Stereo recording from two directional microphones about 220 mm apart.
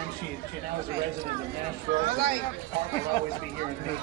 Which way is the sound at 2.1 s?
45° right (ahead or behind).